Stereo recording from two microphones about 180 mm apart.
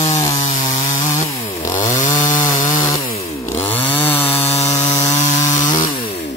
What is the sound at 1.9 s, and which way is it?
Chainsaw, 45° left (ahead or behind).